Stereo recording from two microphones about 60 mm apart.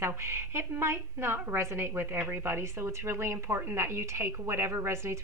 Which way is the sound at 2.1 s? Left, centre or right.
Right.